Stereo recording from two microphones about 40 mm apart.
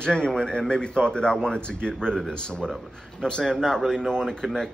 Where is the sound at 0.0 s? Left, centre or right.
Left.